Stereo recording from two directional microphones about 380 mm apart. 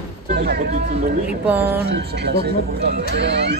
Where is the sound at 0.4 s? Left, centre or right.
Right.